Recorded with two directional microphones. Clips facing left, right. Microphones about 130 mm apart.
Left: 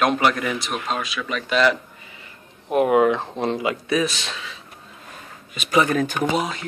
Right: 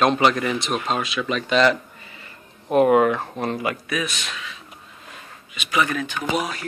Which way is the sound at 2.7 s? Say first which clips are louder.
Right 1 dB; 10° left (ahead or behind).